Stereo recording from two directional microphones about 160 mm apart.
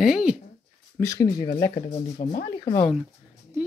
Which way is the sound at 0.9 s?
20° left (ahead or behind).